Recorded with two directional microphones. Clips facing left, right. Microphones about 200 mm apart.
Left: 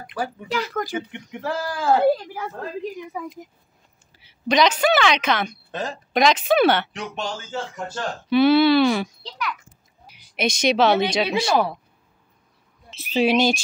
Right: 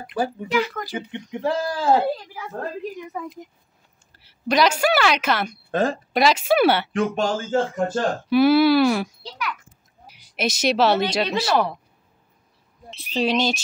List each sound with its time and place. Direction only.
0.5 s speech: 45° left (ahead or behind)
0.9 s speech: 20° right (ahead or behind)
3.1 s a child's voice: 5° left (ahead or behind)
5.7 s speech: 50° right (ahead or behind)
6.1 s a woman's voice: 5° right (ahead or behind)
6.9 s speech: 50° right (ahead or behind)
8.3 s a child's voice: 5° right (ahead or behind)
12.9 s speech: 5° left (ahead or behind)